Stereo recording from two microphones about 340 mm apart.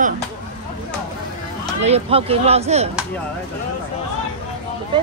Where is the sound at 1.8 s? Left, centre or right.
Centre.